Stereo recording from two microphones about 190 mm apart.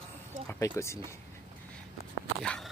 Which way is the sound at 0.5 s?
15° left (ahead or behind).